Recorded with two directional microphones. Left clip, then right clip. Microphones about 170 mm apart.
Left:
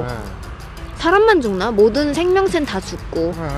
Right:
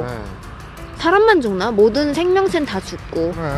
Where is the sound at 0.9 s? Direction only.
Centre (ahead or behind).